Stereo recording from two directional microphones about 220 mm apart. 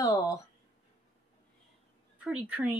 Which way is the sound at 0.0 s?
15° left (ahead or behind).